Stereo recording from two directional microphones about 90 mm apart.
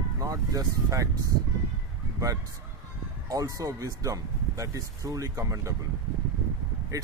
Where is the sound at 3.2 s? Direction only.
40° right (ahead or behind).